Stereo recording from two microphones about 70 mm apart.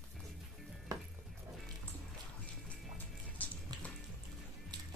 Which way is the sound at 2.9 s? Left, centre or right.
Left.